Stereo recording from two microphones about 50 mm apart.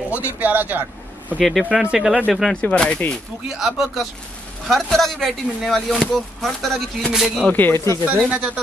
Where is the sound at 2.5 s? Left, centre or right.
Left.